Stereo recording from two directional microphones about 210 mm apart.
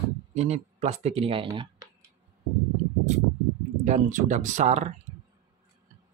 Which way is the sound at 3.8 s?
35° right (ahead or behind).